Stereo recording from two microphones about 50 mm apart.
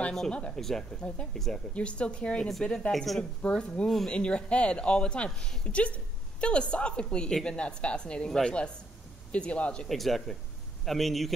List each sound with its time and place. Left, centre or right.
0.3 s speech: left
0.6 s speech: centre
0.9 s speech: centre
1.3 s speech: centre
1.7 s speech: left
2.9 s speech: centre
3.2 s speech: left
5.7 s speech: left
9.8 s speech: centre